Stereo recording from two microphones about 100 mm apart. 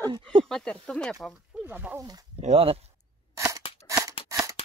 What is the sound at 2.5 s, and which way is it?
Speech, 70° right (ahead or behind).